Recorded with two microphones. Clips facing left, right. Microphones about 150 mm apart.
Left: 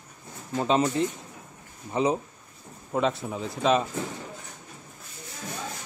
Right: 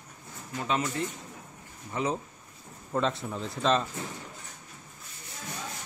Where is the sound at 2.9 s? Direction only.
10° left (ahead or behind).